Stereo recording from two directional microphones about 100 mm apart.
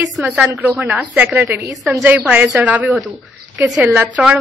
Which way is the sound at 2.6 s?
15° right (ahead or behind).